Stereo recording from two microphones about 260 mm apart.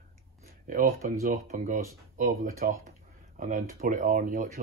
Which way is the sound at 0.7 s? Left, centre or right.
Right.